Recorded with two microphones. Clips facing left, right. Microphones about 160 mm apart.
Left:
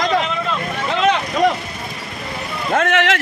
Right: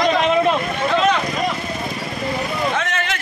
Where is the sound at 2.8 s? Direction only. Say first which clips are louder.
Left 7 dB; 65° left (ahead or behind).